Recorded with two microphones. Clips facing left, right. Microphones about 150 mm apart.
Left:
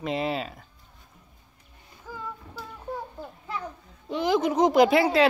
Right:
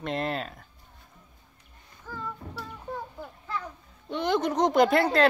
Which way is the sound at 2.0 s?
10° left (ahead or behind).